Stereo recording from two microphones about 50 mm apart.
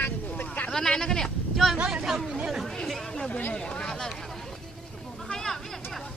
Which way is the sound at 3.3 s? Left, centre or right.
Left.